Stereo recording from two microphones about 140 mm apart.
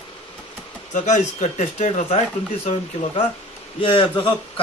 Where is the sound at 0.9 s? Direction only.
60° left (ahead or behind).